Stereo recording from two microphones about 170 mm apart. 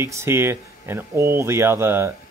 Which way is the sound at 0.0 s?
15° right (ahead or behind).